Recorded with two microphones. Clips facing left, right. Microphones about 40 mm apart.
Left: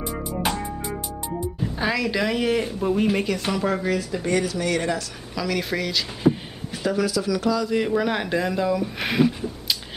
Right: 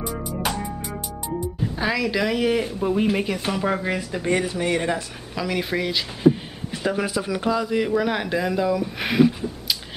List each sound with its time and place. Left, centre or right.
0.0 s music: centre
1.8 s speech: centre
3.8 s speech: right
6.2 s a sound: centre
6.8 s speech: right
7.7 s speech: centre